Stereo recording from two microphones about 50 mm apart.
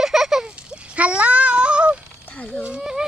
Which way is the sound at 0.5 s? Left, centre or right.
Right.